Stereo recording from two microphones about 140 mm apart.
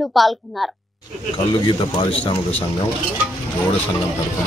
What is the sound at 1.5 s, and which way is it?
Speech, 35° left (ahead or behind).